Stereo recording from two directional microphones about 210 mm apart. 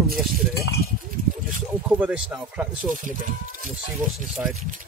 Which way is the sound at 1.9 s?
5° right (ahead or behind).